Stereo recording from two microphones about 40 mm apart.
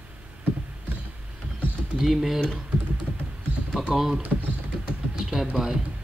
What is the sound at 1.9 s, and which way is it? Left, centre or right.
Speech, centre.